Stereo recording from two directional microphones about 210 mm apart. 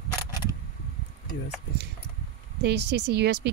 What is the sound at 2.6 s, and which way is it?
Speech, 50° right (ahead or behind).